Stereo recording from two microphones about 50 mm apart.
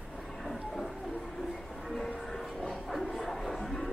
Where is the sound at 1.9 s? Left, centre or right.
Centre.